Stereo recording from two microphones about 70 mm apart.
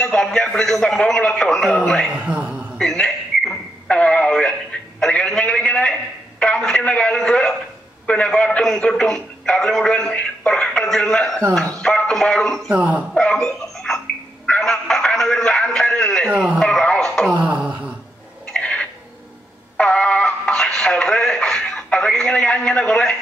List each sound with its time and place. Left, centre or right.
0.0 s a man's voice: centre
2.1 s a man's voice: right
2.8 s radio: centre
5.0 s a sound: centre
8.1 s a man's voice: centre
11.8 s music: centre
12.7 s a man's voice: right
13.1 s a man's voice: centre
13.4 s a sound: centre
16.3 s speech: centre
16.5 s radio: centre
17.3 s a sound: right
18.5 s a sound: centre
19.8 s music: centre